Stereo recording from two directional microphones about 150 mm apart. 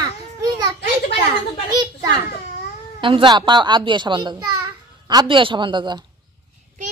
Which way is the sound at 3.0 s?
35° right (ahead or behind).